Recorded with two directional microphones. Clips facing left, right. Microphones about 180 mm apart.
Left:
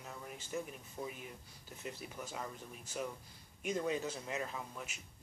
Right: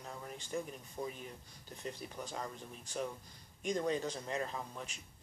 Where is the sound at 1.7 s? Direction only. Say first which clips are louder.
Right 2 dB; 5° left (ahead or behind).